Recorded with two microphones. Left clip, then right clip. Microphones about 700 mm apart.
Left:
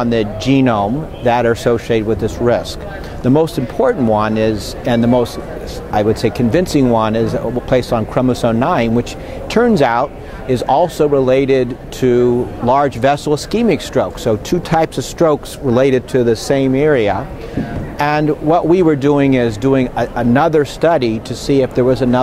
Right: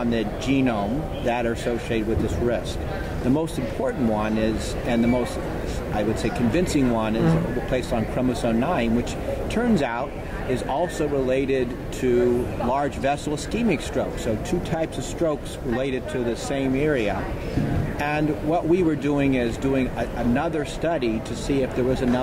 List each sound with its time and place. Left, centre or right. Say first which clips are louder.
0.0 s speech: left 9 dB; left